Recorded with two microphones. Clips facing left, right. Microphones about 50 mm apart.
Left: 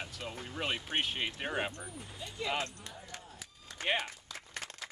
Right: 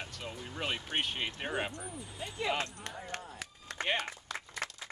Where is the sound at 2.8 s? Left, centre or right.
Right.